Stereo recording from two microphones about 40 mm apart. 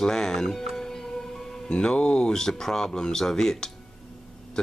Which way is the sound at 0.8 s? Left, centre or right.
Centre.